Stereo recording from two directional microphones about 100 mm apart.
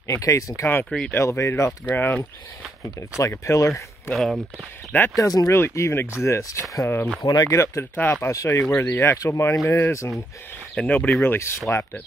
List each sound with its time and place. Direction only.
0.0 s speech: 30° left (ahead or behind)
0.8 s mechanisms: 10° left (ahead or behind)
1.1 s speech: 30° left (ahead or behind)
1.9 s mechanisms: 15° left (ahead or behind)
3.0 s speech: 30° left (ahead or behind)
4.1 s speech: centre (ahead or behind)
5.1 s speech: 35° left (ahead or behind)
5.6 s speech: 25° left (ahead or behind)
10.8 s mechanisms: 15° left (ahead or behind)
11.2 s speech: 25° left (ahead or behind)